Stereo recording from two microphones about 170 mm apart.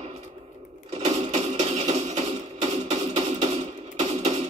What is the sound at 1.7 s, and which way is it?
Music, 40° right (ahead or behind).